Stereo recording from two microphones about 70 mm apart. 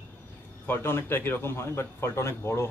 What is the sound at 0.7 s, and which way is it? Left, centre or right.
Speech, left.